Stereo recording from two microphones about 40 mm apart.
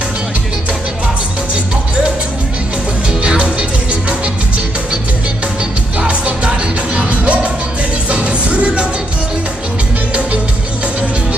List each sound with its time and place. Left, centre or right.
3.2 s music: right
5.9 s music: right